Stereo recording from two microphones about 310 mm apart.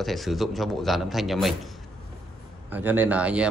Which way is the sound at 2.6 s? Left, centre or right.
Centre.